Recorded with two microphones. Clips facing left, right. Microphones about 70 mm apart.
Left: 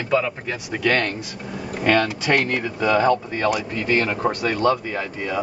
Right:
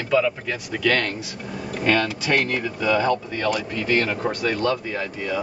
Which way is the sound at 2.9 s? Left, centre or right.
Left.